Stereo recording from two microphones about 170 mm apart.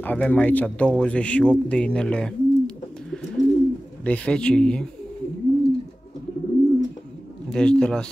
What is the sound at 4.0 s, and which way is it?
Speech, 5° left (ahead or behind).